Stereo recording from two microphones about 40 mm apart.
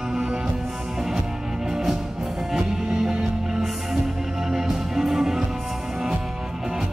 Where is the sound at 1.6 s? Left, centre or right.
Centre.